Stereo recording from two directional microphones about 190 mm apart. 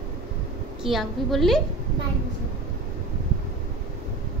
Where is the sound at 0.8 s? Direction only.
Centre (ahead or behind).